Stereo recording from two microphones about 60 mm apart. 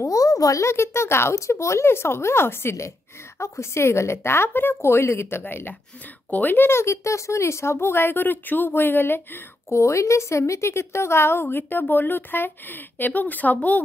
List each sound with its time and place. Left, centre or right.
0.0 s a sound: left
0.7 s speech: left
5.4 s a woman's voice: left
9.7 s a woman's voice: left